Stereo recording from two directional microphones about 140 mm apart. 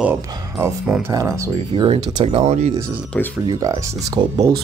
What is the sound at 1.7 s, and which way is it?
Speech, 35° right (ahead or behind).